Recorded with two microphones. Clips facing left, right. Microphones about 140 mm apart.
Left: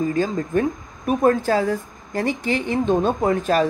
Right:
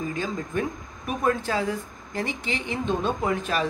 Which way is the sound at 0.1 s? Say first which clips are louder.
Left 8 dB; 40° left (ahead or behind).